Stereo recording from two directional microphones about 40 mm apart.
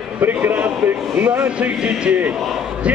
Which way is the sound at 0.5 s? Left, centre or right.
Right.